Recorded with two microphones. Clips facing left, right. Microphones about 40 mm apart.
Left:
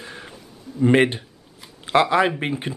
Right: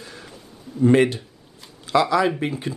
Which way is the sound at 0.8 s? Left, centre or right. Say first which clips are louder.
Even; left.